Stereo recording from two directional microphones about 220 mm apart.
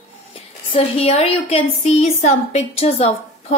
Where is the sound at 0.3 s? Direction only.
25° left (ahead or behind).